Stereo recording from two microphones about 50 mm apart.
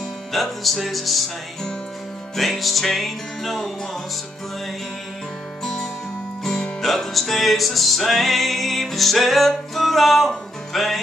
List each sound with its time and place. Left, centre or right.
0.3 s music: centre
2.3 s music: centre
5.6 s music: centre